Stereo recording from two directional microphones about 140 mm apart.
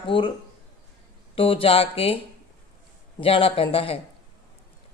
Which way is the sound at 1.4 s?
40° left (ahead or behind).